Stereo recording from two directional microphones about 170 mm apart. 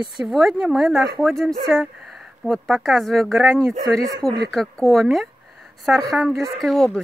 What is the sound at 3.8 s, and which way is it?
Speech, 20° right (ahead or behind).